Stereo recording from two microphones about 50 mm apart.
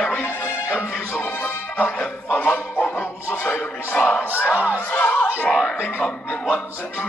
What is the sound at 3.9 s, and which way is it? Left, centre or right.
Music, left.